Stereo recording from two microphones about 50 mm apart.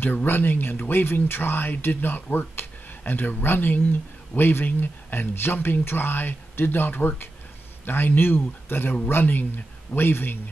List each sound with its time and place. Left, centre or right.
0.0 s speech: left